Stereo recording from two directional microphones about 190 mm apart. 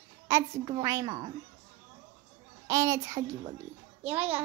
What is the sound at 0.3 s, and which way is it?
Speech, 15° right (ahead or behind).